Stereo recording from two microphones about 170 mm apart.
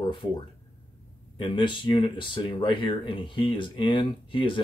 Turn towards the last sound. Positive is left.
turn(degrees=30)  # may be behind; listen again after turning